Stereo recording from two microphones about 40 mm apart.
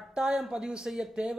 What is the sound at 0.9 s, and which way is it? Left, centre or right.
Speech, centre.